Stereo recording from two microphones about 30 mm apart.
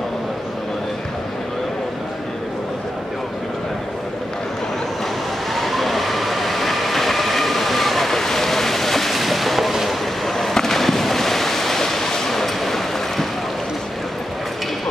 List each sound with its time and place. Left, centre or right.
5.5 s train: centre
9.1 s music: centre
10.2 s fireworks: centre
10.5 s ocean: centre